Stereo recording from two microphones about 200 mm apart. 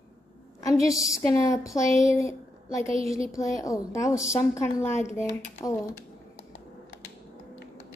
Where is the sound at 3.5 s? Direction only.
15° left (ahead or behind).